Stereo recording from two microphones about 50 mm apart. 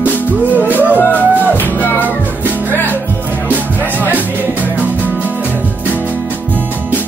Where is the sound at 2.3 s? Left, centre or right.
Right.